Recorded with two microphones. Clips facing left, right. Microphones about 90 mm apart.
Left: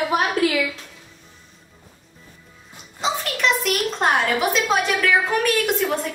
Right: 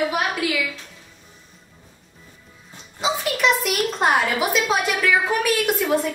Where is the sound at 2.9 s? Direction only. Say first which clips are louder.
Right 1 dB; 5° right (ahead or behind).